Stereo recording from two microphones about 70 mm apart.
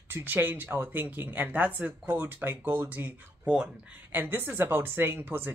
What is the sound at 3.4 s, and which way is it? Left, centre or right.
Speech, centre.